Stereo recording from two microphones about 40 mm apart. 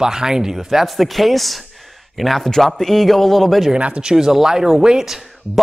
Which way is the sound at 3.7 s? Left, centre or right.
Right.